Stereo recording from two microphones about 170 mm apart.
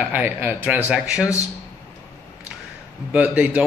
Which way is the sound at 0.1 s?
10° right (ahead or behind).